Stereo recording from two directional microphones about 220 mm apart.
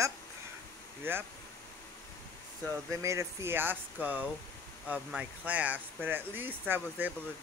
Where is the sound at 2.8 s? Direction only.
15° right (ahead or behind).